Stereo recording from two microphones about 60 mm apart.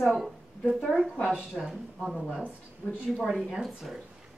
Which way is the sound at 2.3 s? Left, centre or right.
Right.